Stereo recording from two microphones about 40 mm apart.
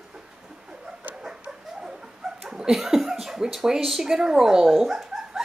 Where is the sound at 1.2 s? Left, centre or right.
Centre.